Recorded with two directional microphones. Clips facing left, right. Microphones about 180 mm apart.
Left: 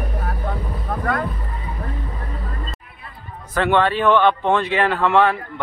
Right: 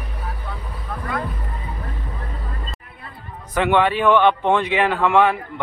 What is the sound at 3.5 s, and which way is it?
A man's voice, 15° right (ahead or behind).